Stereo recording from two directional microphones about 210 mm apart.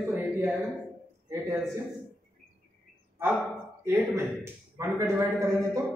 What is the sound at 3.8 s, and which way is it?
A man's voice, 10° right (ahead or behind).